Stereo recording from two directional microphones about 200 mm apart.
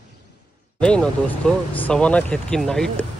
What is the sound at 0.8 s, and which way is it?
Speech, 5° left (ahead or behind).